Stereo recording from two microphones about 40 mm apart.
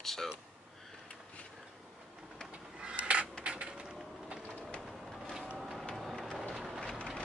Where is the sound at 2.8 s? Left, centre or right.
Right.